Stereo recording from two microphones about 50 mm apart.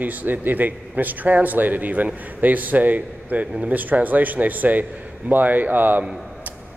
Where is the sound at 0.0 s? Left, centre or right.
Right.